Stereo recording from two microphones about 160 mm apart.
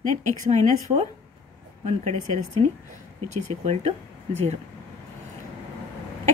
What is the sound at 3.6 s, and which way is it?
Speech, 40° right (ahead or behind).